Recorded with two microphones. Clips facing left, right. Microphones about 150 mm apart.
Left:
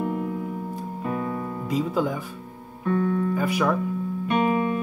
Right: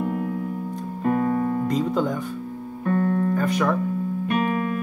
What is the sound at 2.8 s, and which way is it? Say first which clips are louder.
Keyboard: right 1 dB; 50° right (ahead or behind).